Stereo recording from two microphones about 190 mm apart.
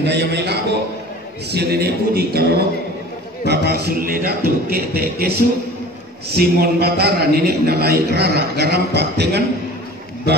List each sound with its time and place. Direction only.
0.0 s a man's voice: 60° right (ahead or behind)
6.3 s a man's voice: 55° right (ahead or behind)